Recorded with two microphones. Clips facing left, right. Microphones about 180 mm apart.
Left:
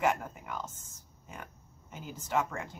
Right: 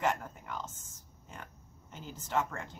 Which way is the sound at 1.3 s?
10° left (ahead or behind).